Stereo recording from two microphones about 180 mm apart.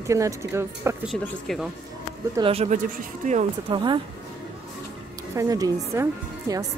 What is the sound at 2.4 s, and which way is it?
Speech, 35° right (ahead or behind).